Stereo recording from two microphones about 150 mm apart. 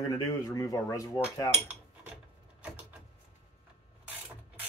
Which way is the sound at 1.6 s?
10° right (ahead or behind).